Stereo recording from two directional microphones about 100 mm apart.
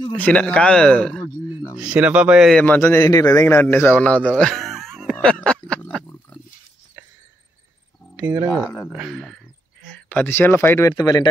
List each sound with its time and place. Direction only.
0.1 s a man's voice: 15° left (ahead or behind)
1.8 s speech: 10° right (ahead or behind)
2.6 s a man's voice: 20° left (ahead or behind)
4.3 s a sound: 5° left (ahead or behind)
8.6 s speech: 25° left (ahead or behind)
9.1 s speech: 5° left (ahead or behind); by 10.9 s 25° left (ahead or behind)
10.9 s speech: 40° left (ahead or behind)